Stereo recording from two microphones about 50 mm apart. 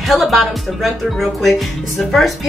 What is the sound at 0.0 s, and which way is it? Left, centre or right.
Speech, centre.